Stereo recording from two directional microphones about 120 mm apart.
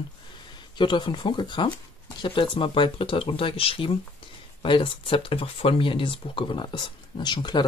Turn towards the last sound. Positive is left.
turn(degrees=40)  # may be behind; listen again after turning